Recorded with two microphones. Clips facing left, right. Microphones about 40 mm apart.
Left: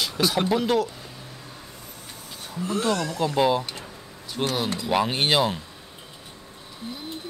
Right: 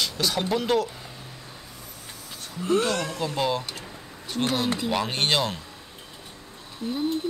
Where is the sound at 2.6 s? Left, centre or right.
Right.